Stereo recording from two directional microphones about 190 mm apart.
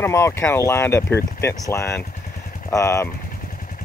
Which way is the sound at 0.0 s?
15° left (ahead or behind).